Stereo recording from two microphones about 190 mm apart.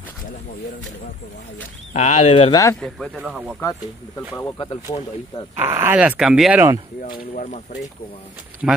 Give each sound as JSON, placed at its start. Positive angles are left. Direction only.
{"t": 2.0, "sound": "speech", "side_deg": 35}
{"t": 2.8, "sound": "speech", "side_deg": 0}
{"t": 4.9, "sound": "speech", "side_deg": 25}
{"t": 5.6, "sound": "speech", "side_deg": -10}
{"t": 7.0, "sound": "speech", "side_deg": 40}
{"t": 8.6, "sound": "speech", "side_deg": -5}